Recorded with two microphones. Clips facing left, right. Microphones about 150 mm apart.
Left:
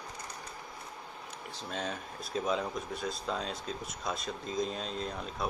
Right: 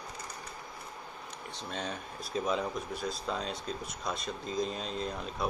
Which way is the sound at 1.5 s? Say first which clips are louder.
Left 1 dB; centre (ahead or behind).